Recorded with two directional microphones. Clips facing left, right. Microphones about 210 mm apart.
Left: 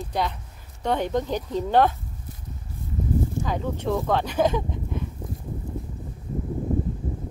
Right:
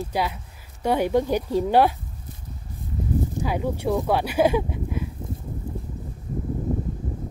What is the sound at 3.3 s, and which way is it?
Speech, 10° right (ahead or behind).